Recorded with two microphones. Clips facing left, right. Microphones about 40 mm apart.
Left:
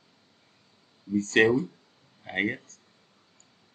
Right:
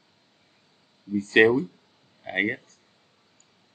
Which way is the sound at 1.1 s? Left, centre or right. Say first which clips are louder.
Right 3 dB; centre.